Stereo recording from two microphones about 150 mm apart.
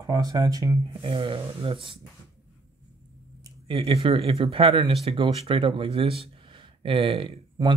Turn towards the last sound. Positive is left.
turn(degrees=-30)  # may be behind; listen again after turning